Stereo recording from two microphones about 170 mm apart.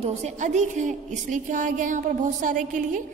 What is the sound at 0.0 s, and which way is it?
A woman's voice, 45° right (ahead or behind).